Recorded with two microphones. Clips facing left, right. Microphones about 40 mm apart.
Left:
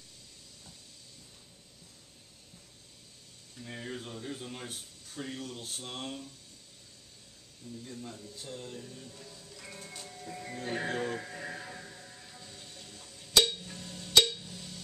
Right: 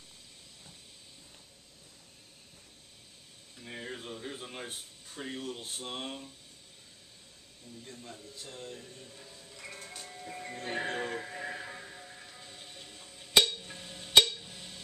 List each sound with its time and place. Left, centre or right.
3.6 s speech: centre
7.7 s speech: right
8.4 s speech: centre
9.2 s music: centre
14.4 s a sound: right